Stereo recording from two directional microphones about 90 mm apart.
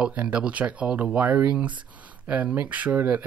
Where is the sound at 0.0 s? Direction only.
15° right (ahead or behind).